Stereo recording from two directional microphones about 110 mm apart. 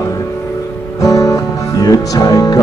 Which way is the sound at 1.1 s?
30° left (ahead or behind).